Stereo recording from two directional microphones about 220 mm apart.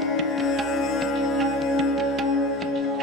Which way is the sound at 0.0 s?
Centre (ahead or behind).